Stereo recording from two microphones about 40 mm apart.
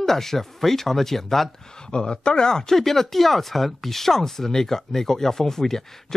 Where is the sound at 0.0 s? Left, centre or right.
Centre.